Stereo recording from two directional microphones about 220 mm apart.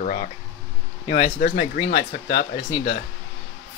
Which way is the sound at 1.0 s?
25° left (ahead or behind).